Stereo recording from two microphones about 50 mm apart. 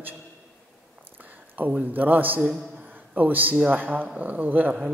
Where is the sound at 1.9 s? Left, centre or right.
Right.